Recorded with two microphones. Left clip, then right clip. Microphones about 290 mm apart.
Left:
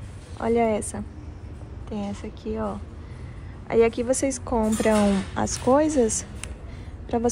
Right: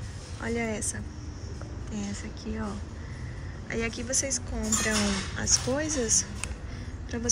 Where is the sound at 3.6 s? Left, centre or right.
Centre.